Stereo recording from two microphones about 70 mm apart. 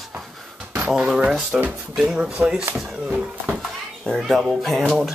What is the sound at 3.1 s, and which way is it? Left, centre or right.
Speech, centre.